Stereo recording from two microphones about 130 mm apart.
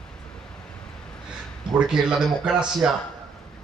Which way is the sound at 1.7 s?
5° right (ahead or behind).